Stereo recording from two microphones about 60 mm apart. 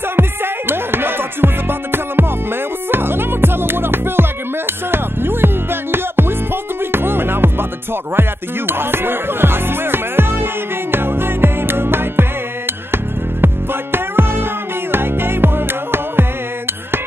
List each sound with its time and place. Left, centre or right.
0.1 s music: right